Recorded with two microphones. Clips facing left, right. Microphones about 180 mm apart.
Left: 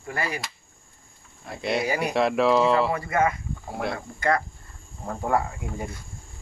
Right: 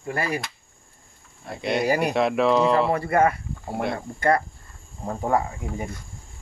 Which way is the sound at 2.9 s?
35° right (ahead or behind).